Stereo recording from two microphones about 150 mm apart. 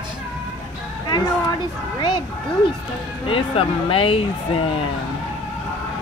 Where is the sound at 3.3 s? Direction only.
35° left (ahead or behind).